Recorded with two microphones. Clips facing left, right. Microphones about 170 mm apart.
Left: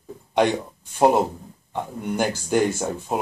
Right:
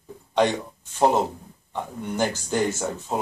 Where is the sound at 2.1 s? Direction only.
10° left (ahead or behind).